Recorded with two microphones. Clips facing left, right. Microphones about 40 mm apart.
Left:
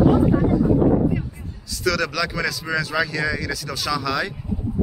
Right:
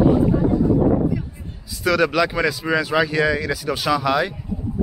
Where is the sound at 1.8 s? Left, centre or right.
Centre.